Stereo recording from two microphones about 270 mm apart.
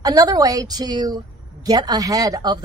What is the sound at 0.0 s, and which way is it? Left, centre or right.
Speech, centre.